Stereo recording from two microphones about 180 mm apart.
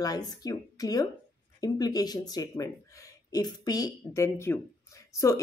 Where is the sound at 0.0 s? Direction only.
20° left (ahead or behind).